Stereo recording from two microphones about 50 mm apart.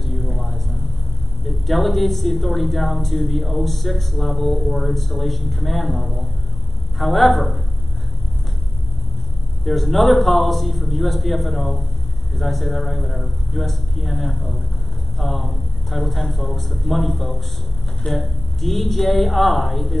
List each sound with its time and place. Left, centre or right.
0.0 s a sound: centre
1.4 s speech: centre
9.7 s speech: centre